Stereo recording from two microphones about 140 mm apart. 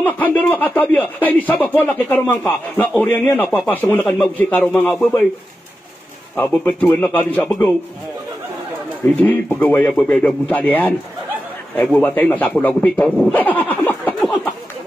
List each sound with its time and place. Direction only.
0.0 s speech: 15° left (ahead or behind)
6.6 s speech: 15° left (ahead or behind)
9.2 s speech: 10° left (ahead or behind)